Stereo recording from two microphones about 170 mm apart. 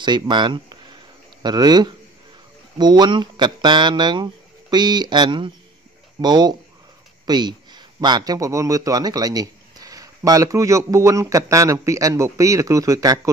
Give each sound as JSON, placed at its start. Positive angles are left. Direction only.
{"t": 0.0, "sound": "a man's voice", "side_deg": -25}